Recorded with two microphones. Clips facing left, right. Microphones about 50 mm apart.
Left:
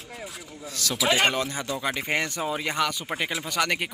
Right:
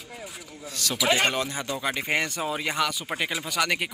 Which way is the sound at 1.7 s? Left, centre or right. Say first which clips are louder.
Right 1 dB; centre.